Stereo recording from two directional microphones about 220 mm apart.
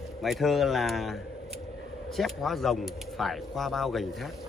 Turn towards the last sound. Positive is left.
turn(degrees=0)  # may be behind; listen again after turning